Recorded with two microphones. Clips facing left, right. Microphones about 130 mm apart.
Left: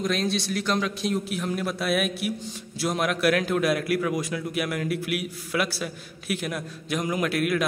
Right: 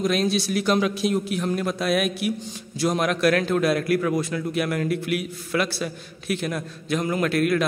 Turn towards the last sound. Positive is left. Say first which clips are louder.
# right 3 dB
turn(degrees=10)  # may be behind; listen again after turning